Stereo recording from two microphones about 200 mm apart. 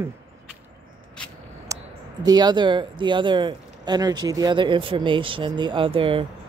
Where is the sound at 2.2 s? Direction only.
20° right (ahead or behind).